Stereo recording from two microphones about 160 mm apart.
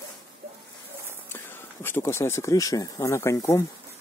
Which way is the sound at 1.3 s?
15° left (ahead or behind).